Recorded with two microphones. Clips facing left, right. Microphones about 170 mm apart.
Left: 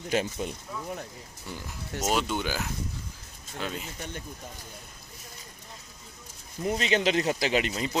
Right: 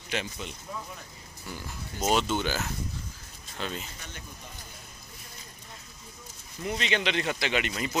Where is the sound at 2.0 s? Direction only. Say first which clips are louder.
Right 2 dB; 10° left (ahead or behind).